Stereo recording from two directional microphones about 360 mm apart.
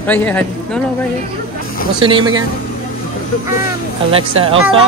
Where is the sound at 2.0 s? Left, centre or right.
Centre.